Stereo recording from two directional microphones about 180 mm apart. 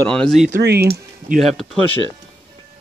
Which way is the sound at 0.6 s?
65° right (ahead or behind).